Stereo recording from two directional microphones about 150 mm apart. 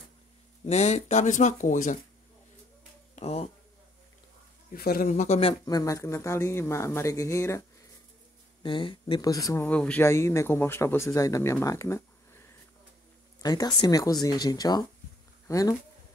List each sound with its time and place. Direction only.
0.7 s speech: 50° left (ahead or behind)
3.2 s speech: 45° left (ahead or behind)
4.7 s speech: 80° left; by 5.4 s 55° left (ahead or behind)
5.4 s speech: 30° left (ahead or behind)
8.6 s speech: 35° left (ahead or behind)
9.7 s speech: 10° left (ahead or behind)
10.0 s speech: 20° left (ahead or behind)
11.6 s a sound: 20° left (ahead or behind)
13.4 s speech: 25° left (ahead or behind)